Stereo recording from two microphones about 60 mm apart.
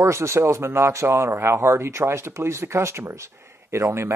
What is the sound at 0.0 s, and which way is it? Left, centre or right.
Speech, right.